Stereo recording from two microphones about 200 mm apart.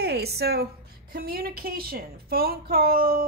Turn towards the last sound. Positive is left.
turn(degrees=-45)  # may be behind; listen again after turning